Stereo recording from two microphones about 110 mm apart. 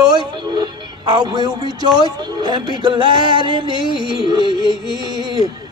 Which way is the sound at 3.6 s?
45° left (ahead or behind).